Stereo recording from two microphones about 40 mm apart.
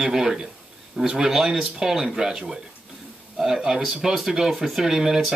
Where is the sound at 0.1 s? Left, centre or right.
Centre.